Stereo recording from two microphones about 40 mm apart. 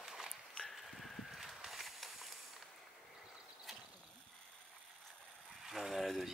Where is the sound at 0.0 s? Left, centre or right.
Centre.